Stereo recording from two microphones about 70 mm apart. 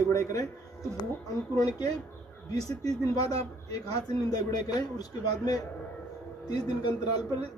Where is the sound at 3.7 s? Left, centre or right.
Left.